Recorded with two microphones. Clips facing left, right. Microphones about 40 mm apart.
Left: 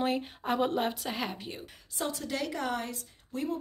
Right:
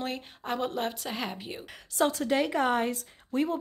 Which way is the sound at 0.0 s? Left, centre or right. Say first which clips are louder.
Left 4 dB; centre.